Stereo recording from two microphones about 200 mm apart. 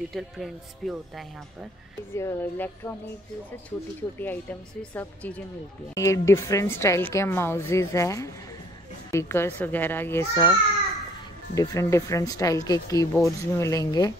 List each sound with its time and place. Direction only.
0.1 s speech: centre (ahead or behind)
2.1 s speech: 10° left (ahead or behind)
4.2 s speech: 10° left (ahead or behind)
11.5 s speech: 15° left (ahead or behind)